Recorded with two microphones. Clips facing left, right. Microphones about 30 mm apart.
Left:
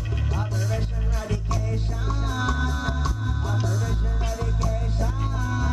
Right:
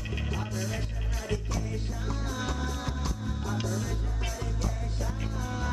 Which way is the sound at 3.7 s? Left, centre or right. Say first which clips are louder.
Left 4 dB; left.